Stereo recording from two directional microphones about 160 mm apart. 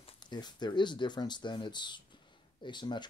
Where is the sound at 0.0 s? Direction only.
25° left (ahead or behind).